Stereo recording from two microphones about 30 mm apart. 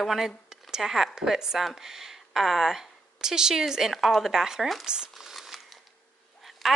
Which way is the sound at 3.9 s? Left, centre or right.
Centre.